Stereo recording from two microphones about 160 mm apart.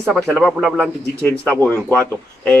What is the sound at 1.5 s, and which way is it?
Speech, 15° right (ahead or behind).